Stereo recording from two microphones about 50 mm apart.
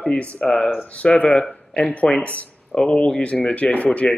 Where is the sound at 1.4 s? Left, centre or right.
Centre.